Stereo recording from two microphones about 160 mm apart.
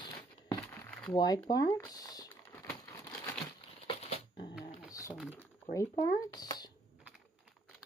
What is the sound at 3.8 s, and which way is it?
Shuffling cards, 40° left (ahead or behind).